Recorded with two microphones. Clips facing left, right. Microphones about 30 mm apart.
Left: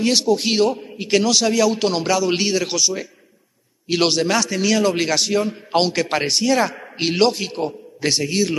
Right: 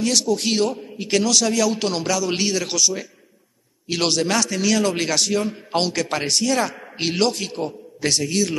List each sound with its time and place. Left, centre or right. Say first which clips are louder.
0.0 s a man's voice: left 3 dB; left